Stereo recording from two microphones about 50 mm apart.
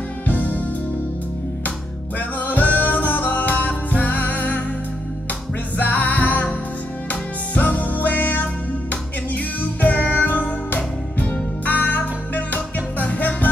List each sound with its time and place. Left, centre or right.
0.3 s music: left
2.1 s music: left
5.8 s music: left